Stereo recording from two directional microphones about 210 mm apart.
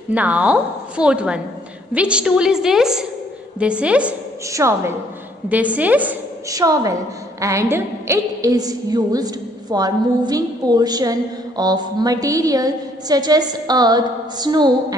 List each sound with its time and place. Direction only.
0.1 s a woman's voice: 5° right (ahead or behind)